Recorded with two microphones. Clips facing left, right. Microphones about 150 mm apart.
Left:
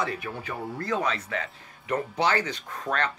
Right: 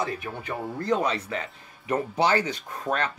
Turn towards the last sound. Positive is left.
turn(degrees=-10)  # may be behind; listen again after turning